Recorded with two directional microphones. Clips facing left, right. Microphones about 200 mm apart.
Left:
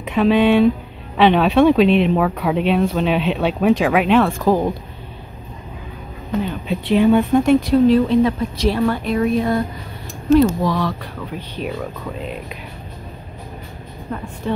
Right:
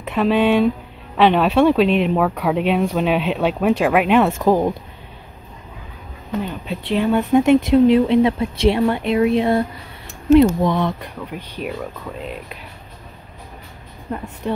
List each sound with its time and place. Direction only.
0.0 s speech: centre (ahead or behind)
4.2 s speech: 20° right (ahead or behind)
6.4 s speech: 5° left (ahead or behind)
7.3 s speech: 20° right (ahead or behind)
12.2 s speech: centre (ahead or behind)